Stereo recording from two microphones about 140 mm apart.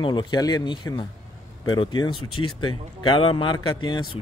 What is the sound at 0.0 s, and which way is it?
Speech, 35° left (ahead or behind).